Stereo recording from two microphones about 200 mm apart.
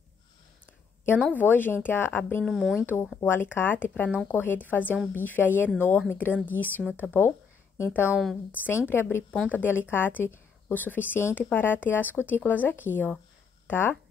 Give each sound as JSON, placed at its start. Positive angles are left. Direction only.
{"t": 1.3, "sound": "speech", "side_deg": 10}
{"t": 3.2, "sound": "speech", "side_deg": 10}
{"t": 8.1, "sound": "speech", "side_deg": 0}